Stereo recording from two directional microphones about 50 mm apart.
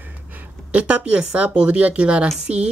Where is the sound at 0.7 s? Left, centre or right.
Right.